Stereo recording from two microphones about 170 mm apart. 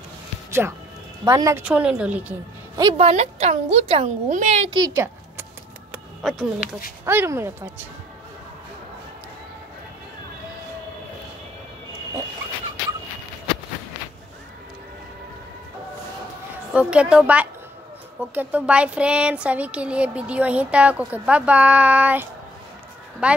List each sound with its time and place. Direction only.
0.5 s speech: 15° right (ahead or behind)
2.8 s a woman's voice: 25° right (ahead or behind)
3.1 s a woman's voice: 40° right (ahead or behind)
4.6 s a sound: 25° right (ahead or behind)
6.2 s speech: centre (ahead or behind)
7.1 s speech: 15° right (ahead or behind)
16.7 s speech: 5° right (ahead or behind)